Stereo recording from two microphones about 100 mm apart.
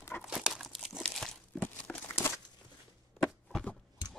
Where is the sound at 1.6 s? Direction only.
20° left (ahead or behind).